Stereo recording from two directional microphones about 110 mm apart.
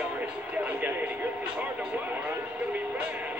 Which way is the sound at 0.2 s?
15° right (ahead or behind).